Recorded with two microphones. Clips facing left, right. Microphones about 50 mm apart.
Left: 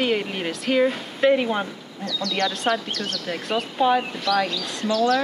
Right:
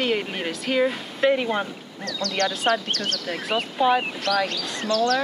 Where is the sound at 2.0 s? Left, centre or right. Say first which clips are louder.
Left 1 dB; right.